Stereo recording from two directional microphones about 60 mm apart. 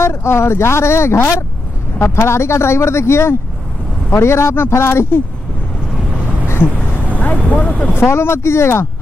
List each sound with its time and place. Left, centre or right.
0.0 s speech: left
7.2 s speech: left
7.9 s speech: left